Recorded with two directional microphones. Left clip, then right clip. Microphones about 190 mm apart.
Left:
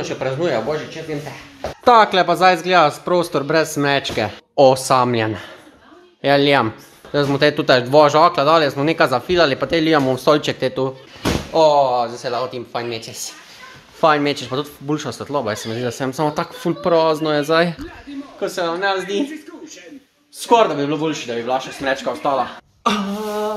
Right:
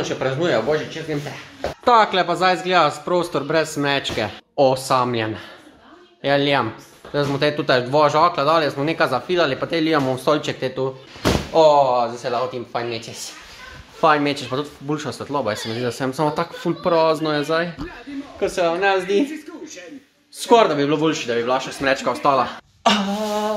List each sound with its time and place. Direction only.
0.0 s speech: 10° left (ahead or behind)
1.9 s speech: 25° left (ahead or behind)
11.5 s speech: 15° left (ahead or behind)
18.4 s speech: centre (ahead or behind)
20.3 s speech: centre (ahead or behind)